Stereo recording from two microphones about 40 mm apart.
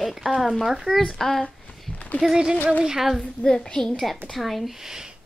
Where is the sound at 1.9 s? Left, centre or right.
Left.